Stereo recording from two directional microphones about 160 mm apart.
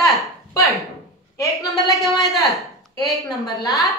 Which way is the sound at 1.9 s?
Centre (ahead or behind).